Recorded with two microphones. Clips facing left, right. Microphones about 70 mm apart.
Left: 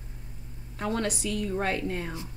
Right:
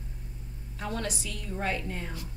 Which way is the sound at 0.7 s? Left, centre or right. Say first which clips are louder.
Left 5 dB; left.